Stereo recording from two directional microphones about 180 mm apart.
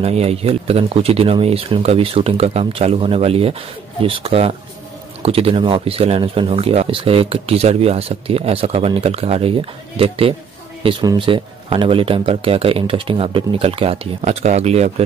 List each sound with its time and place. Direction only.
0.0 s speech: 35° right (ahead or behind)